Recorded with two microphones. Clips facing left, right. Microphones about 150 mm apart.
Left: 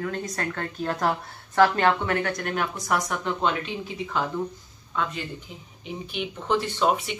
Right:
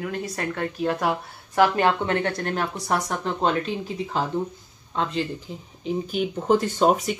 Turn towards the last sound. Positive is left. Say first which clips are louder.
# right 4 dB
turn(degrees=-40)  # may be behind; listen again after turning